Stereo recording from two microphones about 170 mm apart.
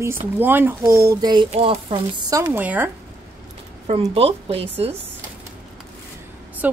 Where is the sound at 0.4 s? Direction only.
10° right (ahead or behind).